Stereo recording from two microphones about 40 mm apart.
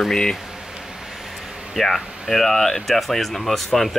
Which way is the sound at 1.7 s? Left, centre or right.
Centre.